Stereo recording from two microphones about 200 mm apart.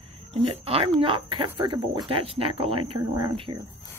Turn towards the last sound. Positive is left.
turn(degrees=-25)  # may be behind; listen again after turning